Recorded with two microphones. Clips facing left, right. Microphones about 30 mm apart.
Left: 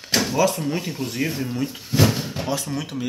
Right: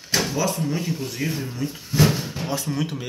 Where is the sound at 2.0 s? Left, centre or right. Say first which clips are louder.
Even; centre.